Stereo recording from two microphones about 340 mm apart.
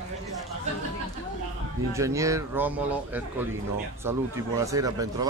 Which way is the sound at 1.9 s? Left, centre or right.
Centre.